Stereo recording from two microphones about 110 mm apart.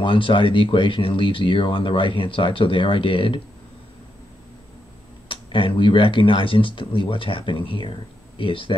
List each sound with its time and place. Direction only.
0.0 s speech: 50° left (ahead or behind)
5.3 s speech: 50° left (ahead or behind)